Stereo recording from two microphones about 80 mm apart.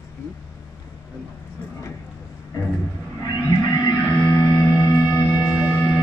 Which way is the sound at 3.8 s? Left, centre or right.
Left.